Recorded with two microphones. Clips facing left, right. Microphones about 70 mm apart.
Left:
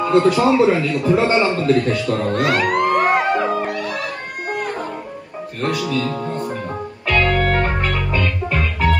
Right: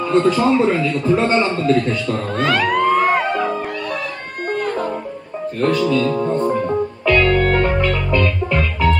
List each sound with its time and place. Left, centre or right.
0.0 s a sound: centre
0.4 s speech: centre
2.0 s music: centre
5.6 s speech: centre
7.2 s music: left
8.2 s music: centre